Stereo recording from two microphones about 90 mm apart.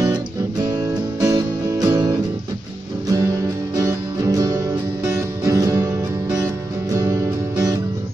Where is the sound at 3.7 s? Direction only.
40° right (ahead or behind).